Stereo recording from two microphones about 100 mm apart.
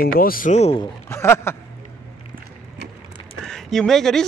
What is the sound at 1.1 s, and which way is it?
Speech, 25° left (ahead or behind).